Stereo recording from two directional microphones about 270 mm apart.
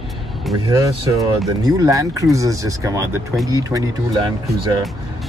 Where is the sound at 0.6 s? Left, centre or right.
Centre.